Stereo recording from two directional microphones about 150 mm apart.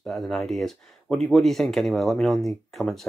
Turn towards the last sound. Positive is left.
turn(degrees=0)  # may be behind; listen again after turning